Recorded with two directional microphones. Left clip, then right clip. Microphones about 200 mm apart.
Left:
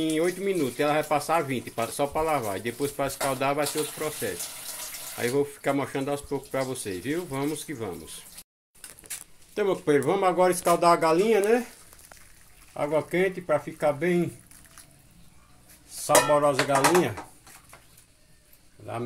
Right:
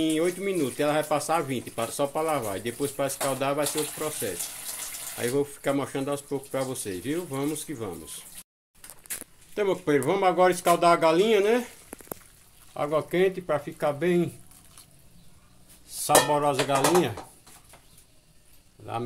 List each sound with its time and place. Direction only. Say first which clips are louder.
0.0 s speech: even; 5° right (ahead or behind)
9.5 s speech: left 1 dB; centre (ahead or behind)
12.7 s speech: even; 5° right (ahead or behind)
16.2 s speech: left 2 dB; 5° right (ahead or behind)